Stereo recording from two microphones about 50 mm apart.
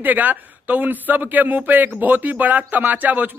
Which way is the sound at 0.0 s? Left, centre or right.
Right.